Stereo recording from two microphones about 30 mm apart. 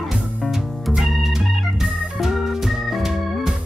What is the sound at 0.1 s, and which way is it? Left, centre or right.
Music, centre.